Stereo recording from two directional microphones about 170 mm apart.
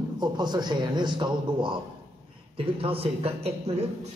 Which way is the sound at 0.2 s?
25° right (ahead or behind).